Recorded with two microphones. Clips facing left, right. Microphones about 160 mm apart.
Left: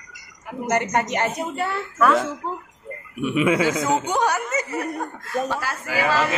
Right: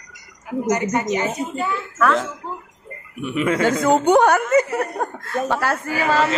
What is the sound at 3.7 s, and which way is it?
Speech, 60° right (ahead or behind).